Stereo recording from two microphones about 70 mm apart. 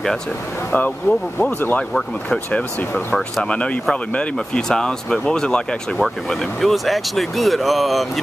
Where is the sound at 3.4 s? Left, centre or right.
Centre.